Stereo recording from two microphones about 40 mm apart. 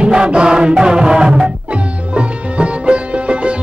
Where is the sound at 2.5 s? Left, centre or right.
Right.